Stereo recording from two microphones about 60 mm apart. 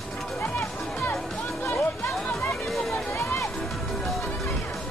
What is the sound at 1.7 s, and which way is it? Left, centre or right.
Music, left.